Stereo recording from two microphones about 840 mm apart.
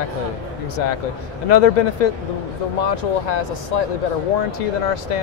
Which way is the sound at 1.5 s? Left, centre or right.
Left.